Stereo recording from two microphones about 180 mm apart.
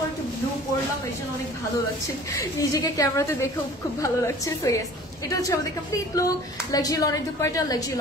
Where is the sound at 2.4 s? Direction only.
20° left (ahead or behind).